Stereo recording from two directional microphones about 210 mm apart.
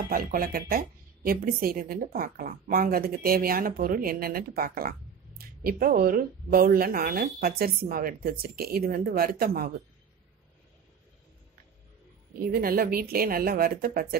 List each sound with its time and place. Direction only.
0.0 s a woman's voice: 45° right (ahead or behind)
12.4 s a woman's voice: 45° right (ahead or behind)